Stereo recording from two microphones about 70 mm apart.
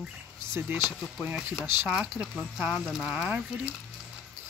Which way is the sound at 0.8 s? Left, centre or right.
Centre.